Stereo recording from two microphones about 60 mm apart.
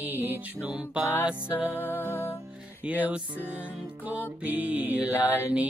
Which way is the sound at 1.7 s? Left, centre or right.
Left.